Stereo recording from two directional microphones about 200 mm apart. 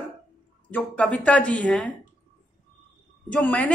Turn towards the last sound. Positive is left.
turn(degrees=5)  # may be behind; listen again after turning